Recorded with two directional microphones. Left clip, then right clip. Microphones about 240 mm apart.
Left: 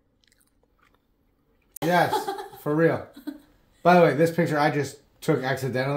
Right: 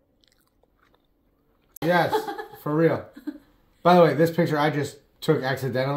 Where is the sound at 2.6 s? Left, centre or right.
Centre.